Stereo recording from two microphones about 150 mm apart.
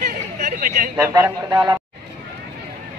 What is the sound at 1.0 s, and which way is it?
Speech, 20° right (ahead or behind).